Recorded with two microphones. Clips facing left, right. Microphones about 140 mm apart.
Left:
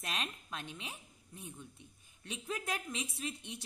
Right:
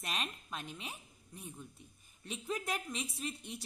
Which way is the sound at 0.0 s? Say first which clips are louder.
Even; centre (ahead or behind).